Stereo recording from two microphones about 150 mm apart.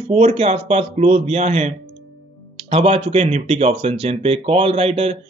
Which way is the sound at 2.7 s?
45° right (ahead or behind).